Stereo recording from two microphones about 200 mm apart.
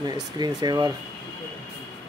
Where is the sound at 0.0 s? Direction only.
20° right (ahead or behind).